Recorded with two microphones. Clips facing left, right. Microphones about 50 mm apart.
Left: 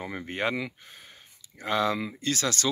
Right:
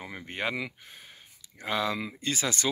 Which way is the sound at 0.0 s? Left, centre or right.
Centre.